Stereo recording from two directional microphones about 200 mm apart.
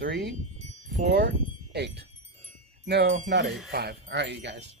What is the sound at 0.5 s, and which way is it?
Wind chime, 35° right (ahead or behind).